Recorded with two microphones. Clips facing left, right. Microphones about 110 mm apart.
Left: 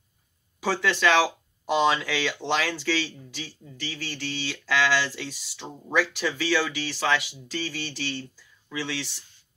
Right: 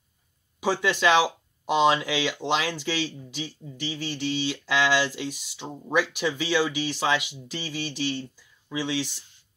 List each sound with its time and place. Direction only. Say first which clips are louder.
0.6 s speech: right 1 dB; 15° right (ahead or behind)